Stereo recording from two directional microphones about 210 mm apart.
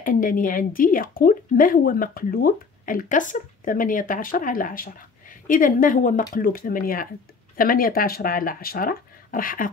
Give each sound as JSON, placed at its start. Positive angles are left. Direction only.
{"t": 0.0, "sound": "speech", "side_deg": 40}